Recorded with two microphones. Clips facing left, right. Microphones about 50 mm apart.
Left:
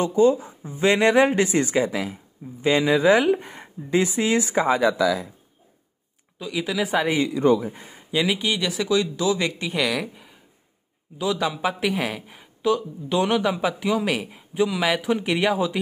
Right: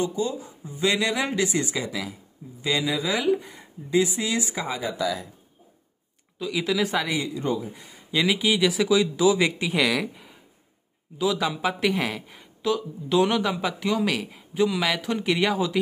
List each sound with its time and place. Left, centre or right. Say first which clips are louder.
0.0 s speech: left 8 dB; left
6.4 s speech: right 1 dB; centre
7.2 s speech: left 8 dB; left
7.6 s speech: left 5 dB; left
8.1 s speech: even; centre